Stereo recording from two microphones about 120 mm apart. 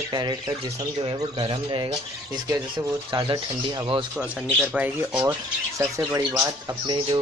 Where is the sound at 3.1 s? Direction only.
40° right (ahead or behind).